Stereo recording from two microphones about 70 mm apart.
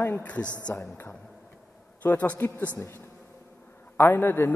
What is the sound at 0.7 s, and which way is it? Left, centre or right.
Speech, left.